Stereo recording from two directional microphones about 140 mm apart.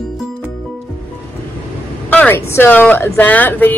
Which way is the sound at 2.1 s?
15° left (ahead or behind).